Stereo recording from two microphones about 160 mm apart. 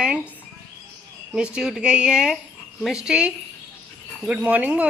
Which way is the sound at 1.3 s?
5° right (ahead or behind).